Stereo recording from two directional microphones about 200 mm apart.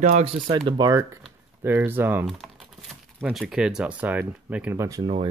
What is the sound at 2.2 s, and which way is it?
Speech, centre (ahead or behind).